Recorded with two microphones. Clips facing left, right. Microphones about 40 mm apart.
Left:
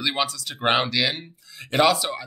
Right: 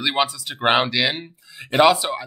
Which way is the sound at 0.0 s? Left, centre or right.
Centre.